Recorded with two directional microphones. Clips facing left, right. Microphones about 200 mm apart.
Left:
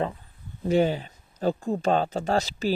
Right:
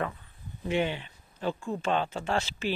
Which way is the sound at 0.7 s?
40° left (ahead or behind).